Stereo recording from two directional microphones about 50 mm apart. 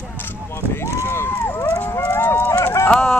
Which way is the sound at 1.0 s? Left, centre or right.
Left.